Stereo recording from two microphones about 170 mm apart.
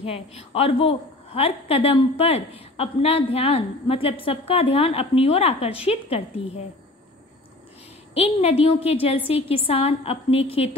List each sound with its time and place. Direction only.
0.0 s a woman's voice: 35° left (ahead or behind)
8.1 s a woman's voice: 35° left (ahead or behind)